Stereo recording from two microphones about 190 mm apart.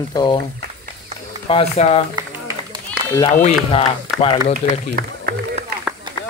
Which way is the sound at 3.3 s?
35° left (ahead or behind).